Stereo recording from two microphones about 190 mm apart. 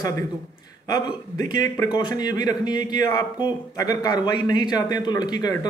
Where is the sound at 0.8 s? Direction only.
20° left (ahead or behind).